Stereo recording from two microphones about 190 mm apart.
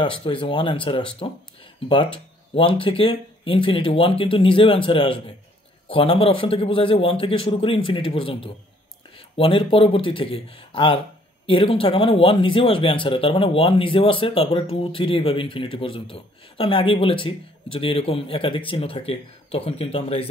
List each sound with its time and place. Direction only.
0.0 s speech: 25° left (ahead or behind)